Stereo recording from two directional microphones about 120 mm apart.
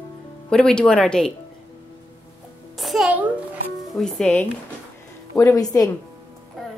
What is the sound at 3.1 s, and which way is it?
Speech, 10° right (ahead or behind).